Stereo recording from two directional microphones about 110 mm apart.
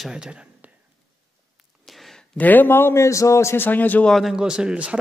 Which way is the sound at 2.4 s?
15° left (ahead or behind).